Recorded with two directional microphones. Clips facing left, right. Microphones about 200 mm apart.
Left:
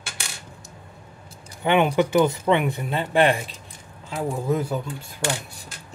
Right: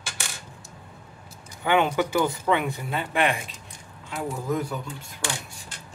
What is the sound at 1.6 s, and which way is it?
Speech, 20° left (ahead or behind).